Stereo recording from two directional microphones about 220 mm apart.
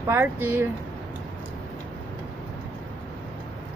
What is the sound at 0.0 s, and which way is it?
Speech, 10° right (ahead or behind).